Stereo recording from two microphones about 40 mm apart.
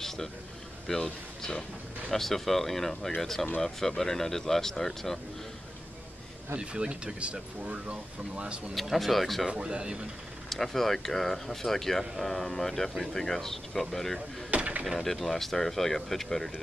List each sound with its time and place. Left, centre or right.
0.8 s speech: centre
6.6 s speech: right
8.9 s speech: centre
9.5 s speech: right
10.5 s speech: centre
14.5 s mechanisms: right
15.3 s speech: centre